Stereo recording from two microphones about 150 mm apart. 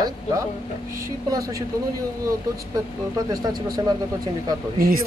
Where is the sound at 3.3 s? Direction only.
25° right (ahead or behind).